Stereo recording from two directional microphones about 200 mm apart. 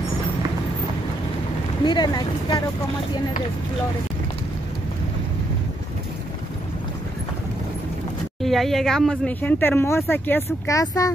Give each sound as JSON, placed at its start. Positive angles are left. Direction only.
{"t": 1.9, "sound": "speech", "side_deg": 20}
{"t": 8.4, "sound": "speech", "side_deg": 0}